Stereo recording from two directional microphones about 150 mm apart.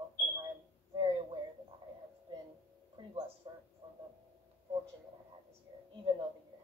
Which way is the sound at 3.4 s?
30° right (ahead or behind).